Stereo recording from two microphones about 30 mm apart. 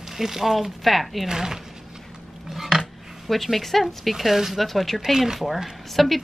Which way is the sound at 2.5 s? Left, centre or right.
Centre.